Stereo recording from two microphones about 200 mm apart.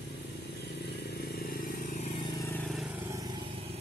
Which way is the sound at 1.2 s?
50° left (ahead or behind).